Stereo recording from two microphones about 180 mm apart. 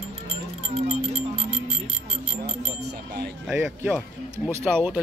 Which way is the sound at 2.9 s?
70° right (ahead or behind).